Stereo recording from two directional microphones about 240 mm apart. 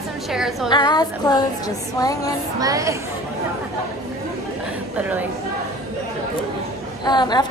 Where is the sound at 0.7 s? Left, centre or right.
Centre.